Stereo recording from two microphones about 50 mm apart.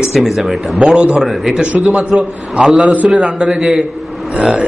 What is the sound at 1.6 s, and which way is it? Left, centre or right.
Speech, right.